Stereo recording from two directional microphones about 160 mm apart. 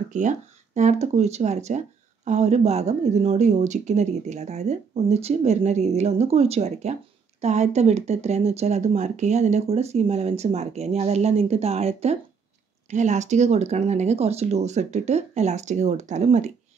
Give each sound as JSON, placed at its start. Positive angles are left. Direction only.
{"t": 0.1, "sound": "speech", "side_deg": -50}